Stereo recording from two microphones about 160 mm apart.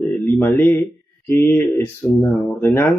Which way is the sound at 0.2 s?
15° left (ahead or behind).